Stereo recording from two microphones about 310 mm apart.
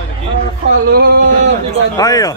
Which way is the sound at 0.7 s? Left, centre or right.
Right.